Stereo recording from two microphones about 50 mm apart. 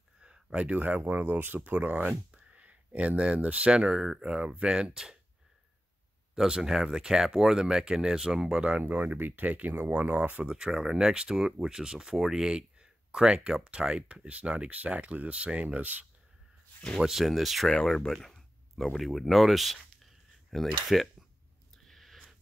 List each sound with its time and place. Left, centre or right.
0.2 s a sound: centre
0.7 s speech: right; by 5.1 s centre
6.3 s speech: centre
8.8 s speech: right
10.4 s speech: centre; by 16.0 s right
17.1 s speech: centre
17.8 s speech: centre
18.2 s a sound: centre
18.9 s speech: centre
21.8 s a sound: centre